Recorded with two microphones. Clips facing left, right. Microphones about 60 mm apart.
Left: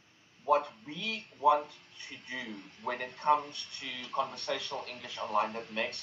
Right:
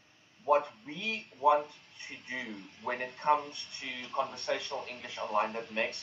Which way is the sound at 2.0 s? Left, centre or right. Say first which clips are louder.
Right 2 dB; right.